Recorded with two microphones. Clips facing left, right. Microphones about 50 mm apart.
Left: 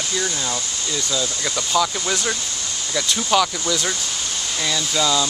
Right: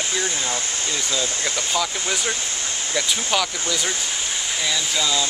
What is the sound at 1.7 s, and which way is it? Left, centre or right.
Speech, centre.